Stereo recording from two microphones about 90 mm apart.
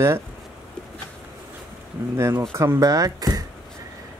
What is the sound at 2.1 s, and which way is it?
Speech, 30° right (ahead or behind).